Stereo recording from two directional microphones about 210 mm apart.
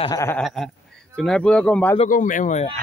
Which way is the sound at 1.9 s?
35° left (ahead or behind).